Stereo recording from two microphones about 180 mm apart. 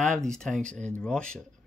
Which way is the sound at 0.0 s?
5° left (ahead or behind).